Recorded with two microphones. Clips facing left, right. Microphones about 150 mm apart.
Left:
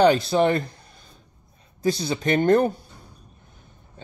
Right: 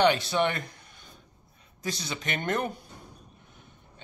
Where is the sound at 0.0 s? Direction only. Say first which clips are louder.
Left 6 dB; 35° left (ahead or behind).